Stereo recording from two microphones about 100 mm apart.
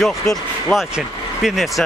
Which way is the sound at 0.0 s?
Centre (ahead or behind).